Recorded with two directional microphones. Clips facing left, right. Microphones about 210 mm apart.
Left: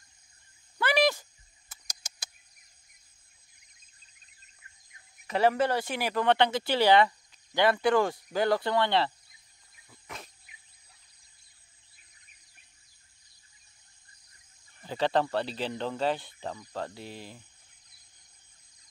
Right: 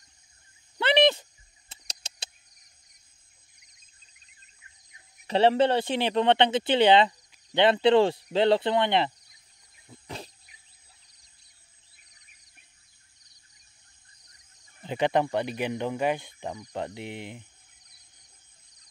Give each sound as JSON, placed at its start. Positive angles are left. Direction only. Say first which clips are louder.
{"t": 0.7, "sound": "a sound", "louder": "right 4 dB", "side_deg": -25}
{"t": 5.2, "sound": "speech", "louder": "right 4 dB", "side_deg": -30}
{"t": 9.8, "sound": "wild animals", "louder": "right 6 dB", "side_deg": -30}
{"t": 14.8, "sound": "speech", "louder": "right 2 dB", "side_deg": -20}